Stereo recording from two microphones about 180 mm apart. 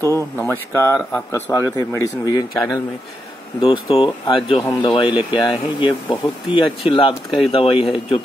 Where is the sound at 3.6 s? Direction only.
30° left (ahead or behind).